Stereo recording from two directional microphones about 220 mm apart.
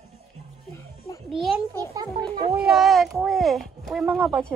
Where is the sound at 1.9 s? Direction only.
15° right (ahead or behind).